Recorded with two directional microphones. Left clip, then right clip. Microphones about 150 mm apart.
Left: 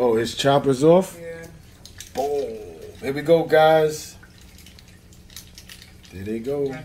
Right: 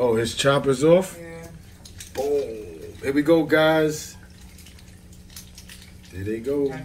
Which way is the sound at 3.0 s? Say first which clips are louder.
Left 1 dB; 35° left (ahead or behind).